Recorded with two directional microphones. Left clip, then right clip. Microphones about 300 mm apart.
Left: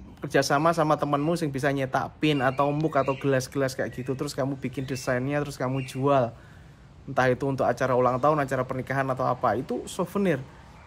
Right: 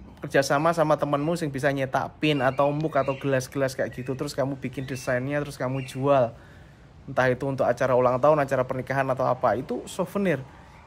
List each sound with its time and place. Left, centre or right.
0.2 s speech: centre